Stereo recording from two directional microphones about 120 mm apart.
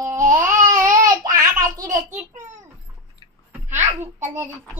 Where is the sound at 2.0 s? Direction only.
90° right.